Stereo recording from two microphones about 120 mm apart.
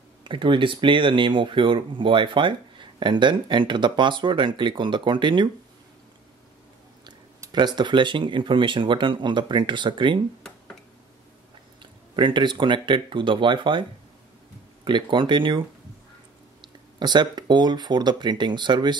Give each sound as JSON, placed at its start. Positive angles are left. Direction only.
{"t": 0.2, "sound": "speech", "side_deg": -45}
{"t": 7.5, "sound": "speech", "side_deg": -40}
{"t": 11.8, "sound": "speech", "side_deg": -40}
{"t": 14.9, "sound": "speech", "side_deg": -40}
{"t": 16.6, "sound": "speech", "side_deg": -40}